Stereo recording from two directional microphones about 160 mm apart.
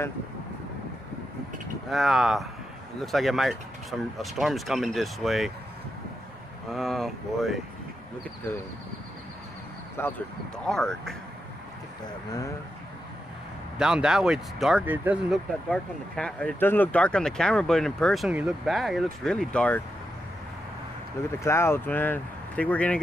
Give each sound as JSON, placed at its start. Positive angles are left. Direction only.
{"t": 1.9, "sound": "speech", "side_deg": 0}
{"t": 6.7, "sound": "speech", "side_deg": 0}
{"t": 9.9, "sound": "speech", "side_deg": 15}
{"t": 10.7, "sound": "speech", "side_deg": 5}
{"t": 12.0, "sound": "speech", "side_deg": 20}
{"t": 13.7, "sound": "speech", "side_deg": -5}
{"t": 15.7, "sound": "speech", "side_deg": 5}
{"t": 18.3, "sound": "speech", "side_deg": -10}
{"t": 21.4, "sound": "speech", "side_deg": 15}